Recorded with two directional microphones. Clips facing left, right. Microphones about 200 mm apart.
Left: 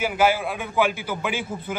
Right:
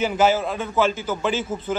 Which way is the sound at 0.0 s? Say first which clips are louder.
Right 2 dB; 10° left (ahead or behind).